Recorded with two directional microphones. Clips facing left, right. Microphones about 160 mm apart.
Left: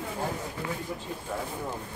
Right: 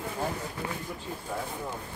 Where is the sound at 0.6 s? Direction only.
25° right (ahead or behind).